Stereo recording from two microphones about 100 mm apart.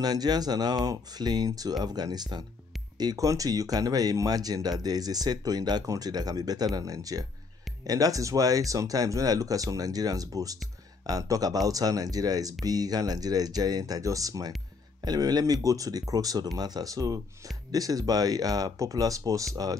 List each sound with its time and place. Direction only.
0.0 s speech: 40° right (ahead or behind)